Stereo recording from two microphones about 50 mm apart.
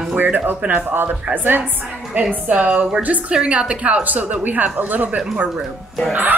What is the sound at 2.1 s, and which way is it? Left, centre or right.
A woman's voice, right.